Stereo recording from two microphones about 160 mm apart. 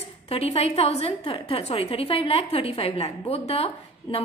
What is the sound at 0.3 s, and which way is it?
A woman's voice, 40° left (ahead or behind).